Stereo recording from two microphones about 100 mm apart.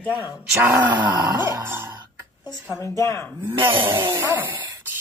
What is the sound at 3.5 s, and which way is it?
Speech, 55° right (ahead or behind).